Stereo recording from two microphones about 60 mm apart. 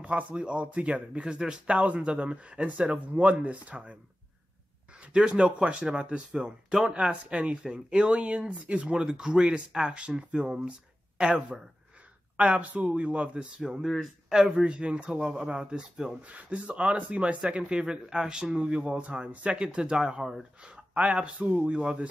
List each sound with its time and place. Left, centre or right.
0.0 s a man's voice: right
5.0 s a man's voice: centre
13.6 s speech: centre